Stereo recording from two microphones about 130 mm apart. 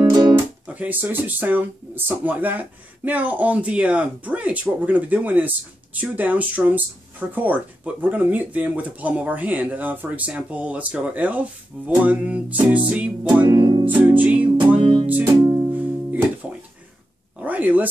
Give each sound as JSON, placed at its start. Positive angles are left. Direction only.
{"t": 0.0, "sound": "guitar", "side_deg": -30}
{"t": 0.7, "sound": "speech", "side_deg": -10}
{"t": 13.6, "sound": "music", "side_deg": -40}
{"t": 13.8, "sound": "speech", "side_deg": -10}
{"t": 14.8, "sound": "music", "side_deg": -40}
{"t": 15.4, "sound": "music", "side_deg": -20}
{"t": 17.4, "sound": "speech", "side_deg": -10}